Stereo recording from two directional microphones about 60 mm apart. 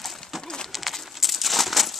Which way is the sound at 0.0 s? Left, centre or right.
Centre.